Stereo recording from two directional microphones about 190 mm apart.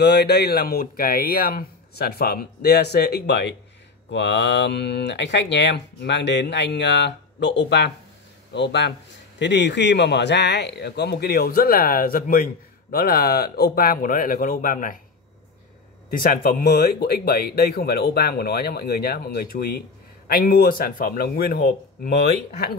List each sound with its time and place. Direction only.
0.0 s speech: 60° left (ahead or behind); by 15.0 s 45° left (ahead or behind)
16.1 s speech: 50° left (ahead or behind)